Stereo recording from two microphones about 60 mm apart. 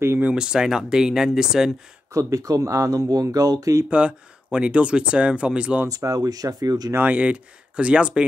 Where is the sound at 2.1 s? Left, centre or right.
Right.